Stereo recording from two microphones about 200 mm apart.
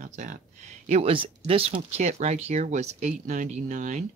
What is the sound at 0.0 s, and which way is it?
Speech, 40° right (ahead or behind).